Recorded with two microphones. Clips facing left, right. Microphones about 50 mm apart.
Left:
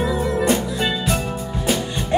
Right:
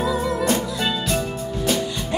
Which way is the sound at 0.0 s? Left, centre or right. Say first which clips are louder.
Left 1 dB; left.